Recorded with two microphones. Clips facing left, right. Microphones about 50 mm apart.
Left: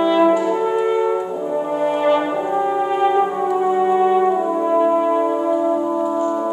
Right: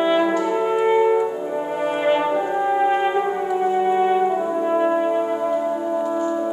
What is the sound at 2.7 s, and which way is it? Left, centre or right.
Brass instrument, centre.